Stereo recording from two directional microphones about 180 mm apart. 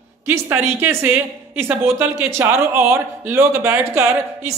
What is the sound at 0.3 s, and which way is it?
Speech, 15° right (ahead or behind).